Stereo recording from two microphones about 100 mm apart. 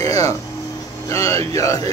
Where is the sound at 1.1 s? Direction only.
30° left (ahead or behind).